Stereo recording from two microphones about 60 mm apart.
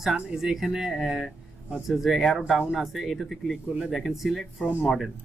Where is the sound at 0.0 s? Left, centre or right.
Centre.